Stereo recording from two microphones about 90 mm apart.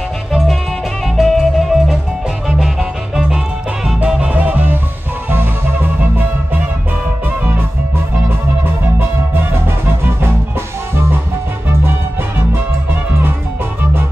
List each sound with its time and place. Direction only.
1.0 s music: centre (ahead or behind); by 6.6 s 20° right (ahead or behind)
8.8 s music: 25° right (ahead or behind)